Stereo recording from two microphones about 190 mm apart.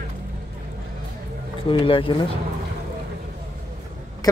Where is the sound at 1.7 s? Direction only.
25° left (ahead or behind).